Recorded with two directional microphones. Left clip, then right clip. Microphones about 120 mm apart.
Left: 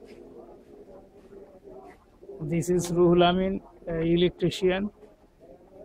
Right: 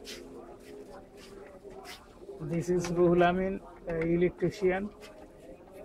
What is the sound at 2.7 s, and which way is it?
Speech, 20° left (ahead or behind).